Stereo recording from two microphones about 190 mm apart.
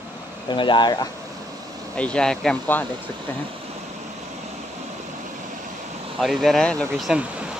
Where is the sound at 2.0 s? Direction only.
5° left (ahead or behind).